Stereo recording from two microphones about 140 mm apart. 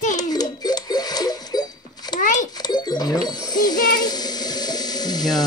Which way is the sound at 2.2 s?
65° left (ahead or behind).